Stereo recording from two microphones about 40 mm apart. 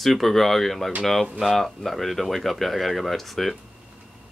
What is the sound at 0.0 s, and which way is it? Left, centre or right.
Speech, centre.